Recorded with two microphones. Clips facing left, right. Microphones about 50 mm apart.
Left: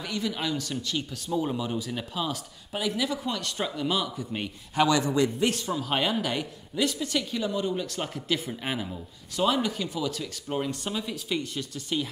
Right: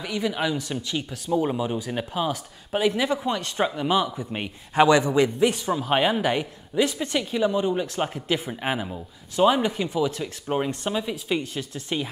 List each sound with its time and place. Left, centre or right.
0.0 s a woman's voice: centre